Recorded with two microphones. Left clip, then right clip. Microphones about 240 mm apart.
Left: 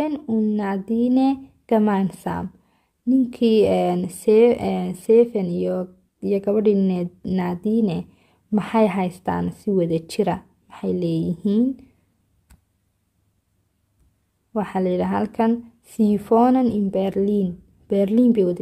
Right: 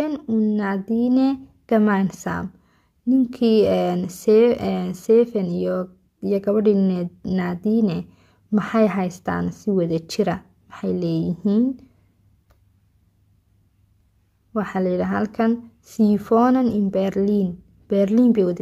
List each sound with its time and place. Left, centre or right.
0.0 s speech: centre
14.5 s speech: centre